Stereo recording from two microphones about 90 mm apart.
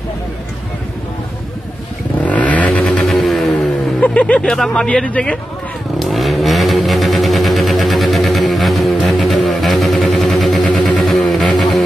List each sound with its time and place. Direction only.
2.2 s vehicle: 15° left (ahead or behind)
2.9 s music: 5° left (ahead or behind)
4.0 s speech: 15° left (ahead or behind)
5.9 s vehicle: centre (ahead or behind)
10.9 s a sound: 5° left (ahead or behind)